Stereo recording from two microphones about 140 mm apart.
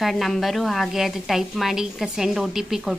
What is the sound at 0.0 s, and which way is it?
A woman's voice, centre (ahead or behind).